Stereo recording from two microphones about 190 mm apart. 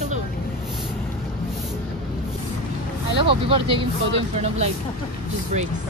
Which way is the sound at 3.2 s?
30° right (ahead or behind).